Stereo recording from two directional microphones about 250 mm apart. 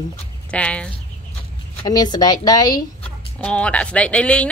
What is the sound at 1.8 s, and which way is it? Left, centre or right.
Speech, centre.